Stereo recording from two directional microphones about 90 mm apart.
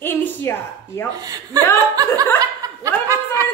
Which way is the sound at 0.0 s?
20° left (ahead or behind).